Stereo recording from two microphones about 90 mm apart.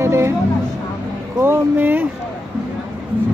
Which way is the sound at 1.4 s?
25° right (ahead or behind).